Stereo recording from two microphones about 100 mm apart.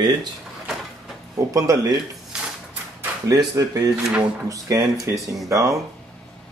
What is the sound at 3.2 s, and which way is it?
Speech, 40° right (ahead or behind).